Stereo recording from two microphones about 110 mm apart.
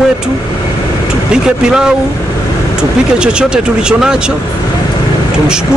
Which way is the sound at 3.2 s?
10° right (ahead or behind).